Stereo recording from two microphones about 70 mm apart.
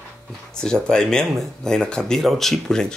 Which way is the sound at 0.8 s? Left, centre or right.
Centre.